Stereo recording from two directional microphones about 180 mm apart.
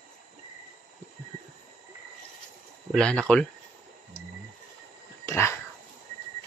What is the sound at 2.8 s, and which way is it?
Speech, 5° left (ahead or behind).